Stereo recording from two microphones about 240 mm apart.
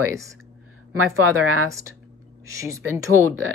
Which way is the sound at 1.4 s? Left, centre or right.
Right.